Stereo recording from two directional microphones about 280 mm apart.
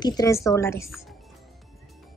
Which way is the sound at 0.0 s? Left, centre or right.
Centre.